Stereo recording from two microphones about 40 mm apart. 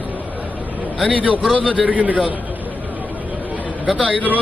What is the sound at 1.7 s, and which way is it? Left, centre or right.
Speech, right.